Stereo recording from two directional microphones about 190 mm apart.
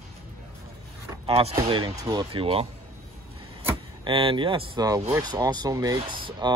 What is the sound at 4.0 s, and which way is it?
Speech, 30° right (ahead or behind).